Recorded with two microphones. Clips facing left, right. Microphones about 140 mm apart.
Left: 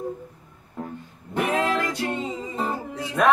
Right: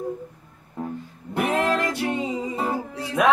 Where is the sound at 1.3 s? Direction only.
15° right (ahead or behind).